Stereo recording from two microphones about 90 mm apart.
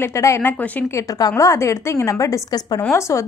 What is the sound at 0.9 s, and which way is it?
Speech, 40° left (ahead or behind).